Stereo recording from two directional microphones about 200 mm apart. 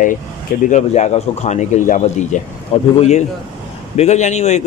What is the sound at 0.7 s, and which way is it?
A man's voice, 35° left (ahead or behind).